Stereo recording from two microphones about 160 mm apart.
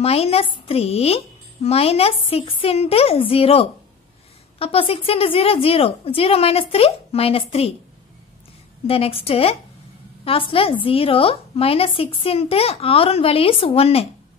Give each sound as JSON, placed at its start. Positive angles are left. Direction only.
{"t": 0.0, "sound": "speech", "side_deg": 40}
{"t": 8.8, "sound": "speech", "side_deg": 35}